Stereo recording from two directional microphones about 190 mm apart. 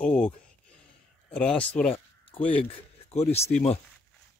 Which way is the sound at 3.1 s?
35° left (ahead or behind).